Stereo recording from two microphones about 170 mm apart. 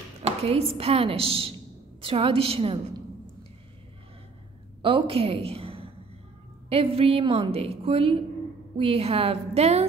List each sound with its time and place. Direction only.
0.2 s a woman's voice: 35° right (ahead or behind)
4.8 s a woman's voice: 30° right (ahead or behind)